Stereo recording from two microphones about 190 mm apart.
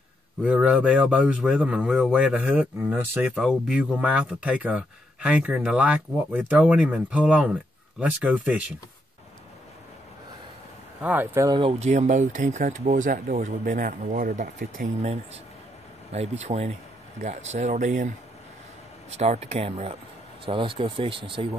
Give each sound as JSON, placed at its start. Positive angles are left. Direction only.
{"t": 0.4, "sound": "speech", "side_deg": -5}
{"t": 11.0, "sound": "speech", "side_deg": -10}
{"t": 11.5, "sound": "speech", "side_deg": -30}
{"t": 19.1, "sound": "speech", "side_deg": -35}